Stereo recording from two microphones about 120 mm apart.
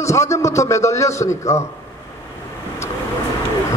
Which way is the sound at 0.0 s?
25° left (ahead or behind).